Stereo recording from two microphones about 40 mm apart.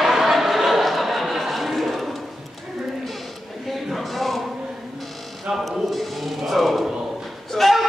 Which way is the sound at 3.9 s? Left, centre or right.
Centre.